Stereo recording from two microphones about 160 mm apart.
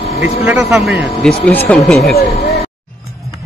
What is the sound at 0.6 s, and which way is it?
Speech, 5° right (ahead or behind).